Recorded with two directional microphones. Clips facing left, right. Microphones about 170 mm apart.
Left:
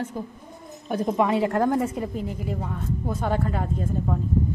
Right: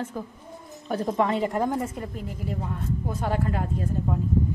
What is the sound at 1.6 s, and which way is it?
A woman's voice, centre (ahead or behind).